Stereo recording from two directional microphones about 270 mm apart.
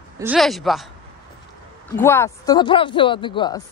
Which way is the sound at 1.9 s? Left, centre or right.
Centre.